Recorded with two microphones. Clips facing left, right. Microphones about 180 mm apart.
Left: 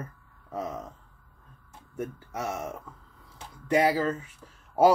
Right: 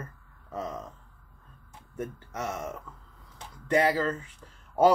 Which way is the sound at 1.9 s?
10° left (ahead or behind).